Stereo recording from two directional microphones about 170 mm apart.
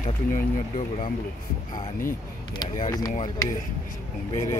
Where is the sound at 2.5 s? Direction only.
25° left (ahead or behind).